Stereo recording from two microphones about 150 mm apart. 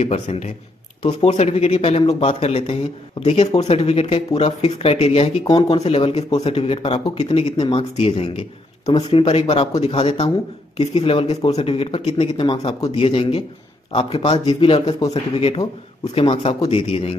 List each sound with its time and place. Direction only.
0.0 s speech: 50° left (ahead or behind)